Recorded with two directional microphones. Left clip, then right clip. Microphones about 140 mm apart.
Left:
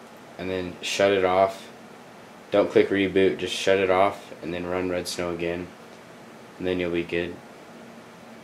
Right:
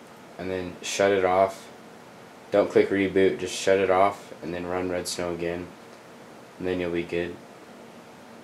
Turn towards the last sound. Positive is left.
turn(degrees=15)  # may be behind; listen again after turning